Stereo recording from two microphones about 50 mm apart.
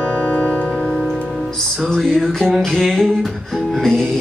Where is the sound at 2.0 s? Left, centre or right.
Centre.